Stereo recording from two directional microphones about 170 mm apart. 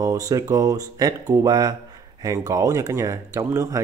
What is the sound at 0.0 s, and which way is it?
Speech, 20° right (ahead or behind).